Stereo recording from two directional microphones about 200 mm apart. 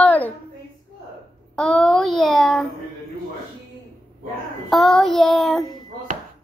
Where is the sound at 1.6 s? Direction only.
Centre (ahead or behind).